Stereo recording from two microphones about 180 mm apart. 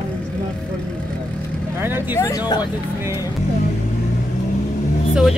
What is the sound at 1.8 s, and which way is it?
Speech, 10° right (ahead or behind).